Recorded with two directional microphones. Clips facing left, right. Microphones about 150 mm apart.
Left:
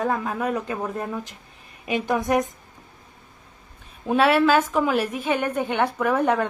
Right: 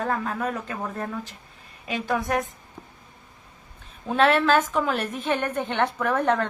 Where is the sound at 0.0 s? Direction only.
10° left (ahead or behind).